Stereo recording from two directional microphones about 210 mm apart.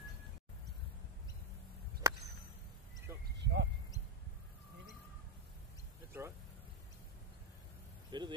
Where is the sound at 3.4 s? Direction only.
55° right (ahead or behind).